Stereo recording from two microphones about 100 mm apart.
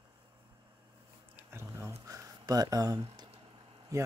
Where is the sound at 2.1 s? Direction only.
40° right (ahead or behind).